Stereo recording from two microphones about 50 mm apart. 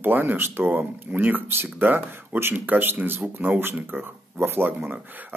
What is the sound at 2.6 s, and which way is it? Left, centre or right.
Speech, right.